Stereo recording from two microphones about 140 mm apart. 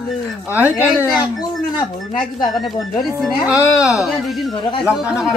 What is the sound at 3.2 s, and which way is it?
Speech, centre (ahead or behind).